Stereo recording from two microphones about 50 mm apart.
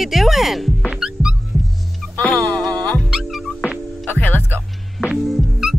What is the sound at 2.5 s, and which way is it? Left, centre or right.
Music, centre.